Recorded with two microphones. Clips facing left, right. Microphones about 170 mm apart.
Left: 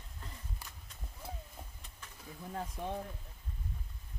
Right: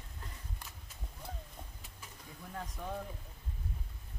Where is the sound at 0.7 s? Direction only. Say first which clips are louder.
Right 1 dB; 5° right (ahead or behind).